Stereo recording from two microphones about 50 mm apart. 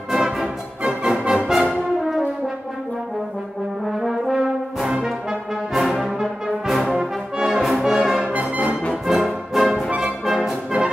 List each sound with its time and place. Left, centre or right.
0.1 s music: centre
2.0 s brass instrument: centre
4.1 s brass instrument: centre
8.3 s music: right
9.0 s music: centre
10.2 s brass instrument: centre